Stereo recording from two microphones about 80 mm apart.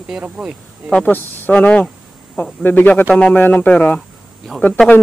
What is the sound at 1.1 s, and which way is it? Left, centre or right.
Speech, left.